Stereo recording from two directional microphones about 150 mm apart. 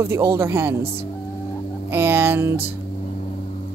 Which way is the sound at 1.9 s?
15° right (ahead or behind).